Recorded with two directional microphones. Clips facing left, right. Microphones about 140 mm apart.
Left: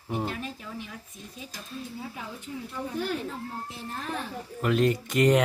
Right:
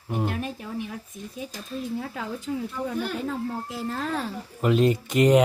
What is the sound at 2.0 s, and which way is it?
A woman's voice, 90° right.